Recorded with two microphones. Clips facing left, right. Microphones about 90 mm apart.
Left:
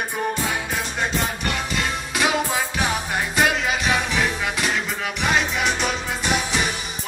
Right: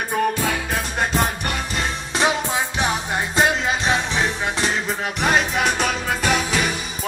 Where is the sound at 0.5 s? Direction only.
55° right (ahead or behind).